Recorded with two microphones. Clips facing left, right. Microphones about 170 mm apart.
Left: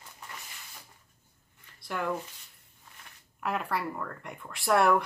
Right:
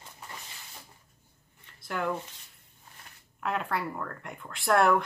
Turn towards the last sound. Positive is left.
turn(degrees=0)  # may be behind; listen again after turning